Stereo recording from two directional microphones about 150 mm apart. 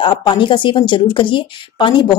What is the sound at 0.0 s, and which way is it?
Speech, 30° left (ahead or behind).